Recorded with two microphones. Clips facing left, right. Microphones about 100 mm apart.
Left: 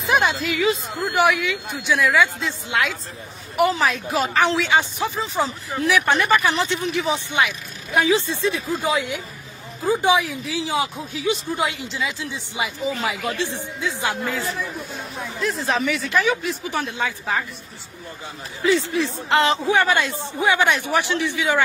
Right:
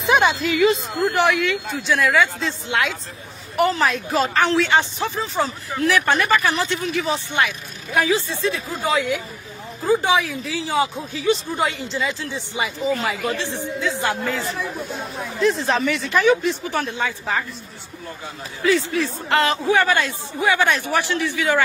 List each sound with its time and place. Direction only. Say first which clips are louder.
0.0 s speech: right 2 dB; centre (ahead or behind)
2.0 s speech: even; 5° left (ahead or behind)
9.8 s speech: even; 15° left (ahead or behind)
18.6 s a man's voice: even; 20° left (ahead or behind)